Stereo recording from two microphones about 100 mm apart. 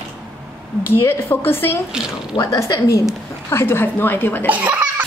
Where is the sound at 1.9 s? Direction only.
10° right (ahead or behind).